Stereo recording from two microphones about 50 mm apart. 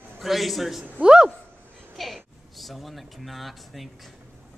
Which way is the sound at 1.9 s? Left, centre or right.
Centre.